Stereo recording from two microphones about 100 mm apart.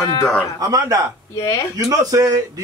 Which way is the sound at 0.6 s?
35° right (ahead or behind).